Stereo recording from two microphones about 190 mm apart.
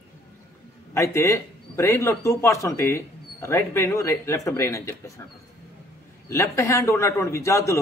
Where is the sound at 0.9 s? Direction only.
15° left (ahead or behind).